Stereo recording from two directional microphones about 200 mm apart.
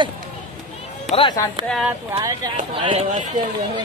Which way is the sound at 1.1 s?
25° left (ahead or behind).